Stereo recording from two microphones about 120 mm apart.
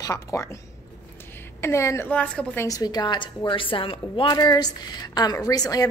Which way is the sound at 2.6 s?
30° left (ahead or behind).